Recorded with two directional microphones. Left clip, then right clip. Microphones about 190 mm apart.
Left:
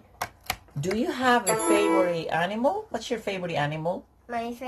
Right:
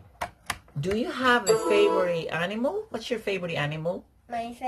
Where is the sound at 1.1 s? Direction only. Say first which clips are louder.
Right 1 dB; 10° right (ahead or behind).